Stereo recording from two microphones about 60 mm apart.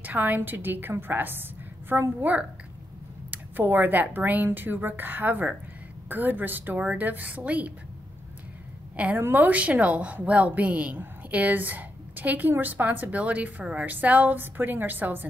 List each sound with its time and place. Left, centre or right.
0.0 s a woman's voice: right
8.9 s a woman's voice: right